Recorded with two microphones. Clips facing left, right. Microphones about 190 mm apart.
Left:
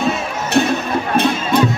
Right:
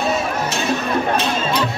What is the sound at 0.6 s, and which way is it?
Music, 60° left (ahead or behind).